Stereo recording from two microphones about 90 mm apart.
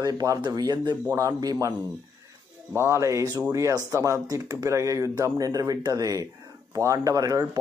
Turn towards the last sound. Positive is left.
turn(degrees=-40)  # may be behind; listen again after turning